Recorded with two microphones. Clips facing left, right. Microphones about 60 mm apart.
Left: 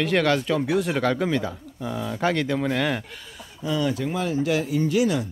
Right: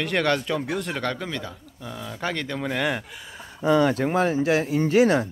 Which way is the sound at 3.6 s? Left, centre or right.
Right.